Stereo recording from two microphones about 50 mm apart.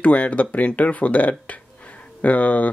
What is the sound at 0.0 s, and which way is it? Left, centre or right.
Speech, left.